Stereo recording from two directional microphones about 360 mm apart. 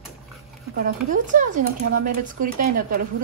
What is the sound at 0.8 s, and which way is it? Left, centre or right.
A woman's voice, right.